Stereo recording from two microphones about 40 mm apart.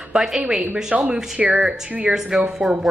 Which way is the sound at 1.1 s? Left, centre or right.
Right.